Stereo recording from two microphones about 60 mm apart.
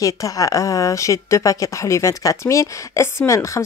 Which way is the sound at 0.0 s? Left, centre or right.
Left.